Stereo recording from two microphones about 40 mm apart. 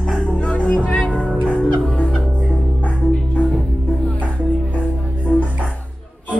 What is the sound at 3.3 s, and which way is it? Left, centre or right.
Music, left.